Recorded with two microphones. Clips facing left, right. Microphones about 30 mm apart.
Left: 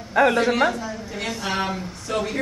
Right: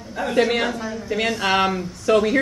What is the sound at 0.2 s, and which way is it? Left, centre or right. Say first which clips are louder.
Speech: left 9 dB; left.